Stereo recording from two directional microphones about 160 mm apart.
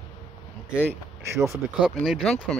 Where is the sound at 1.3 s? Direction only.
20° right (ahead or behind).